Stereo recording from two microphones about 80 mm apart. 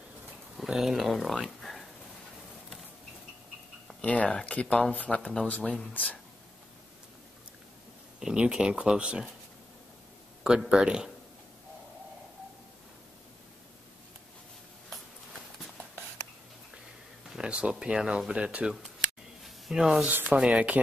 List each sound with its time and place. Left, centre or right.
0.6 s speech: centre
4.0 s speech: centre
8.2 s speech: centre
10.4 s speech: centre
17.3 s speech: centre
19.4 s a sound: centre
20.1 s speech: right
20.3 s speech: centre